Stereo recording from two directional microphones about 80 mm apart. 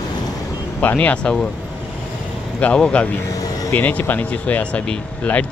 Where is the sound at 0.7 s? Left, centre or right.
Left.